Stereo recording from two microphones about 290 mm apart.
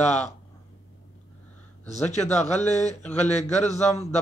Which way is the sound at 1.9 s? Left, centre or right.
Left.